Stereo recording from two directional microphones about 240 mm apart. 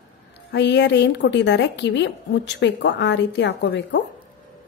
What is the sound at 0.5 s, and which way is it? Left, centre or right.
Speech, left.